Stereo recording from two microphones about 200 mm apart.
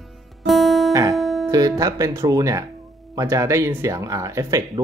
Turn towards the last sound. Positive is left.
turn(degrees=-15)  # may be behind; listen again after turning